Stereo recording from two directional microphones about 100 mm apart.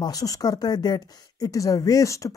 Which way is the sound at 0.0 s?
35° left (ahead or behind).